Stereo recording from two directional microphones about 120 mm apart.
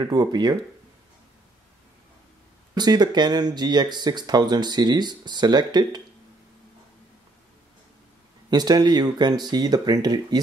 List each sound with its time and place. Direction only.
0.0 s speech: 35° right (ahead or behind)
2.7 s speech: 35° right (ahead or behind)
8.5 s speech: 35° right (ahead or behind)